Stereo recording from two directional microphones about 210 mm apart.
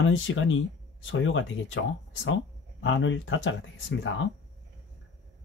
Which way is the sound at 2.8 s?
65° left (ahead or behind).